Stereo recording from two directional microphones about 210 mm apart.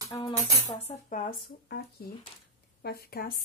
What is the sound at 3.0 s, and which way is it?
Speech, 45° left (ahead or behind).